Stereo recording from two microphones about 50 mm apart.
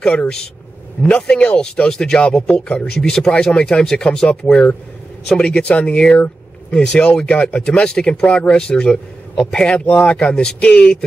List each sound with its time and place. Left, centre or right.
1.0 s speech: left